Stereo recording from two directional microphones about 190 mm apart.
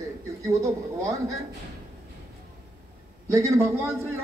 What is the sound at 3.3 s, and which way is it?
Speech, 15° right (ahead or behind).